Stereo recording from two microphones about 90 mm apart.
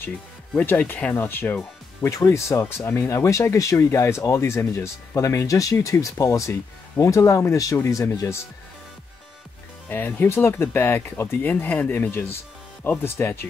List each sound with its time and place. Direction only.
0.6 s speech: 20° left (ahead or behind)
1.1 s speech: 25° left (ahead or behind)
2.0 s speech: 35° left (ahead or behind)
9.8 s speech: 20° left (ahead or behind)